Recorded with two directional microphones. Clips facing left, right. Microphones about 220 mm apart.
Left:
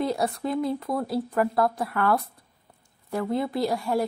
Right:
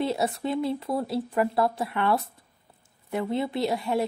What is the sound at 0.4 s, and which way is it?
A woman's voice, 25° right (ahead or behind).